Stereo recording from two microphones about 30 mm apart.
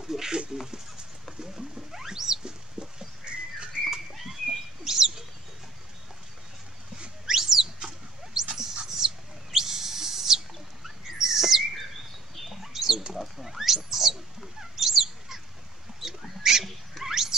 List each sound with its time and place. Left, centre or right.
0.0 s chicken: centre
1.4 s wild animals: centre
1.9 s rodents: centre
2.4 s bird: right
3.9 s rodents: centre
7.2 s goat: centre
8.3 s dog: centre
8.8 s owl: centre
12.7 s a sound: centre
13.8 s rodents: centre
14.6 s bird: centre
16.0 s rodents: centre
16.4 s a sound: centre